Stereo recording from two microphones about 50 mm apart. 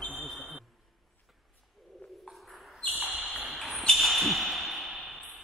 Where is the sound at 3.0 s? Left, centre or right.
Right.